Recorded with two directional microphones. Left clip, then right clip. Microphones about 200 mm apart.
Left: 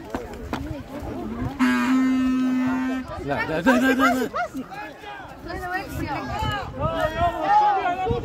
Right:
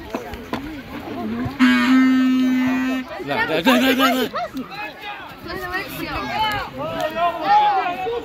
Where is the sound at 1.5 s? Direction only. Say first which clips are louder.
Right 6 dB; 60° left (ahead or behind).